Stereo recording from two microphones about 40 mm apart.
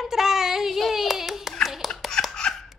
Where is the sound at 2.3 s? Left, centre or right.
Centre.